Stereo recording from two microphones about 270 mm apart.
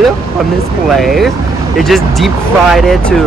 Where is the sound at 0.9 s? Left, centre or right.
Centre.